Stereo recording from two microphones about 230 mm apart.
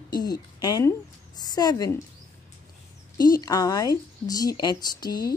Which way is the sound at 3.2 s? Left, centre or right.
Centre.